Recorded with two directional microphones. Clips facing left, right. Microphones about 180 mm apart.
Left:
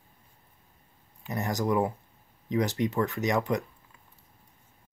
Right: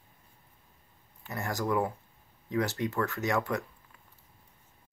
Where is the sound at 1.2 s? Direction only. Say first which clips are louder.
Left 3 dB; 20° left (ahead or behind).